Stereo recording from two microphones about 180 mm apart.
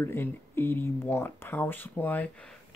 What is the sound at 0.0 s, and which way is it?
Speech, 10° left (ahead or behind).